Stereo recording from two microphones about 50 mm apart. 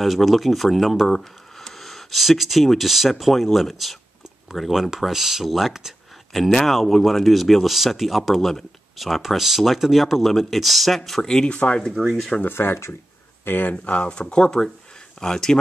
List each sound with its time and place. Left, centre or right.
0.0 s speech: centre
11.4 s speech: left
12.0 s speech: centre
12.4 s speech: left
13.9 s speech: left